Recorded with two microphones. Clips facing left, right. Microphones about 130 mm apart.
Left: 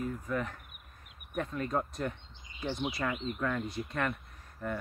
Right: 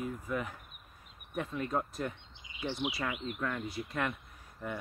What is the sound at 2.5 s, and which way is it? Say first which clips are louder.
Bird: even; 35° left (ahead or behind).